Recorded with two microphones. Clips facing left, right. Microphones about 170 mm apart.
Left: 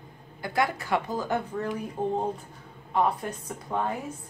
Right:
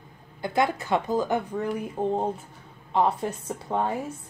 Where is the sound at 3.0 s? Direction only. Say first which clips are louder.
Right 2 dB; 25° right (ahead or behind).